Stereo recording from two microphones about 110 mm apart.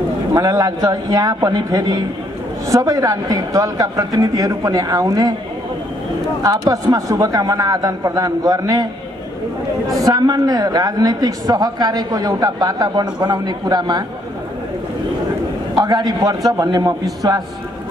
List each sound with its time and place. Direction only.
0.3 s a woman's voice: 30° right (ahead or behind)
6.4 s a woman's voice: 30° right (ahead or behind)
9.9 s a woman's voice: 35° right (ahead or behind)
15.7 s a woman's voice: 40° right (ahead or behind)